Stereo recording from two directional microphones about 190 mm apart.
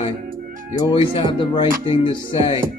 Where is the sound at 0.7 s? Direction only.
25° left (ahead or behind).